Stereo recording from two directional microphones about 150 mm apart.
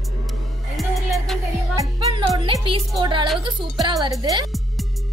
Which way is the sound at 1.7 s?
20° right (ahead or behind).